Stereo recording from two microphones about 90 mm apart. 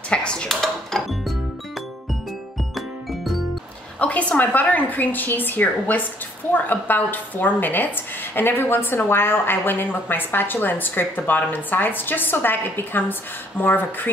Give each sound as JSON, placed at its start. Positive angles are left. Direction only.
{"t": 0.1, "sound": "music", "side_deg": 10}
{"t": 4.0, "sound": "a woman's voice", "side_deg": 15}